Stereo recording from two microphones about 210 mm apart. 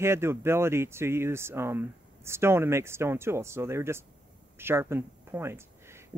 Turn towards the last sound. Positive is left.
turn(degrees=-10)  # may be behind; listen again after turning